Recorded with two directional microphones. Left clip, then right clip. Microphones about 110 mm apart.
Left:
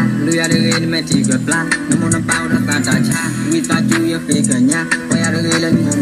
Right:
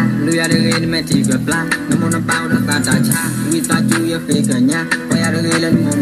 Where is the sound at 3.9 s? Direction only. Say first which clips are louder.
Left 1 dB; 90° right.